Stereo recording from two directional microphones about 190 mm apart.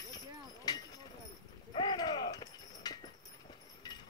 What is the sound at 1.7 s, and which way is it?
Dog, 25° left (ahead or behind).